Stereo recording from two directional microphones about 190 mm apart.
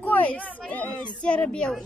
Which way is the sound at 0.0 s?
10° left (ahead or behind).